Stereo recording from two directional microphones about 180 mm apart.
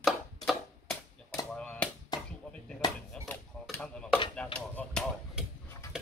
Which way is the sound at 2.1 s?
25° left (ahead or behind).